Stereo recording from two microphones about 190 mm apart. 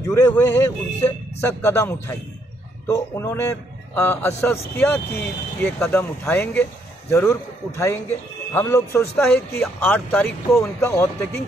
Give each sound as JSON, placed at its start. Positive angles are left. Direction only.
{"t": 0.0, "sound": "a man's voice", "side_deg": 15}